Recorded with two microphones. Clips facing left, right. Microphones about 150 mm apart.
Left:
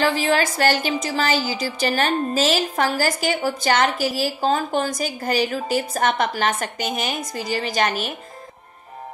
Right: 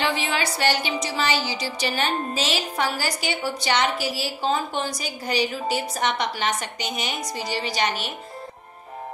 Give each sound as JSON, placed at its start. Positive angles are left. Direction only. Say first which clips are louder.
{"t": 0.0, "sound": "a woman's voice", "louder": "left 5 dB", "side_deg": 40}